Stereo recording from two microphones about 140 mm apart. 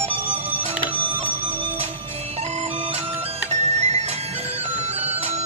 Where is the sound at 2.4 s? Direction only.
50° right (ahead or behind).